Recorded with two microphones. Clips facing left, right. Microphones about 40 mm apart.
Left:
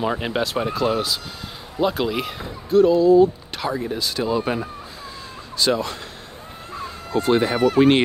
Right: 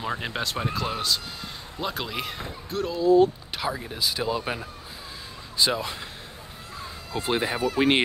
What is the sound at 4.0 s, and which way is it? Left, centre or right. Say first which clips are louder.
Speech: left 4 dB; centre.